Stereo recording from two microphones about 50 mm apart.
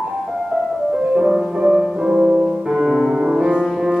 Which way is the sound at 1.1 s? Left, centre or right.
Centre.